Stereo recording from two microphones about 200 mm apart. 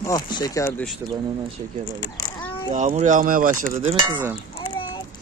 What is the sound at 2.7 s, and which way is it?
Speech, 35° right (ahead or behind).